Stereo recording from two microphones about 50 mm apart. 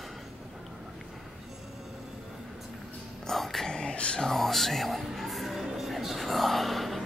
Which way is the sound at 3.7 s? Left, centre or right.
Centre.